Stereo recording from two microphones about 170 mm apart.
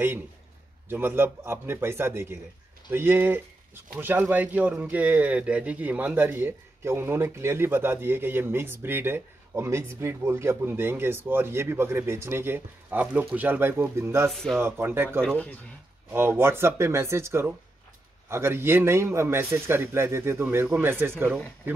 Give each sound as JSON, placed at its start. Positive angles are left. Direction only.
{"t": 0.8, "sound": "speech", "side_deg": -10}
{"t": 14.3, "sound": "speech", "side_deg": 0}
{"t": 14.6, "sound": "speech", "side_deg": -10}
{"t": 15.2, "sound": "speech", "side_deg": 5}
{"t": 16.1, "sound": "speech", "side_deg": -15}